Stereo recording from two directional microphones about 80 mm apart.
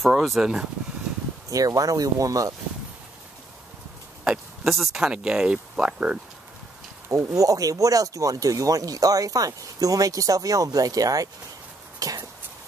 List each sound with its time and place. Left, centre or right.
0.0 s speech: centre
1.5 s speech: right
4.2 s speech: centre
7.1 s speech: right
12.0 s a sound: right